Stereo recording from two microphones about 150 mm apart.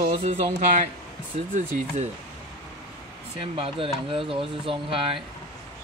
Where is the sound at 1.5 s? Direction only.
55° right (ahead or behind).